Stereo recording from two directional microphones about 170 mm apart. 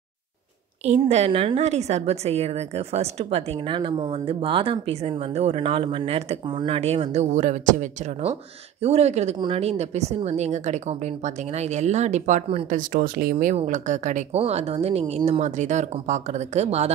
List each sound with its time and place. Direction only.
0.8 s a woman's voice: 40° right (ahead or behind)
12.6 s speech: 55° right (ahead or behind)
13.6 s a woman's voice: 45° right (ahead or behind)